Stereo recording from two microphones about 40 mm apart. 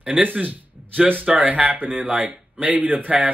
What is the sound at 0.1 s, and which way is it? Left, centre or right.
Speech, right.